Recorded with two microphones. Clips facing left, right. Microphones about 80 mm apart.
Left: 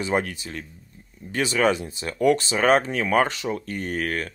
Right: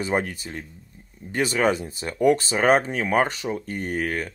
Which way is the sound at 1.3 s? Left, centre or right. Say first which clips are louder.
Even; right.